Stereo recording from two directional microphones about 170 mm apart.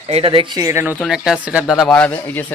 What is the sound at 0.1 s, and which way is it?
Speech, 30° right (ahead or behind).